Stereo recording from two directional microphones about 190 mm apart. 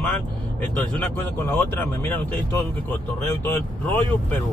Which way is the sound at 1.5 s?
10° left (ahead or behind).